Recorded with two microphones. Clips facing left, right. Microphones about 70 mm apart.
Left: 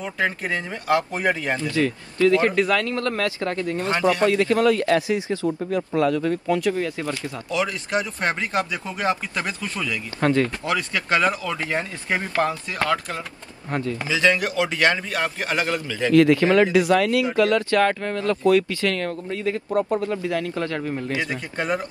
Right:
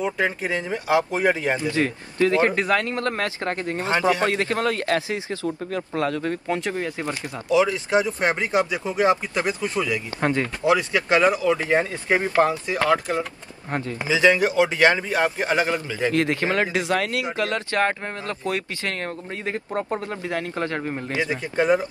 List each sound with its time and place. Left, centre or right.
0.0 s speech: centre
1.8 s speech: right
3.8 s speech: right
4.5 s speech: right
6.0 s speech: right
6.5 s speech: right